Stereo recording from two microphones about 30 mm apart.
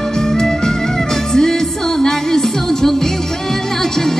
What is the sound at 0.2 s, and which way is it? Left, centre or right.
Music, centre.